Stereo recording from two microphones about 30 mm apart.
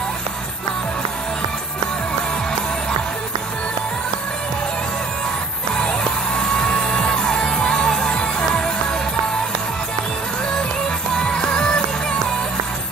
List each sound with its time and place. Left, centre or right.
6.4 s music: centre
11.1 s music: left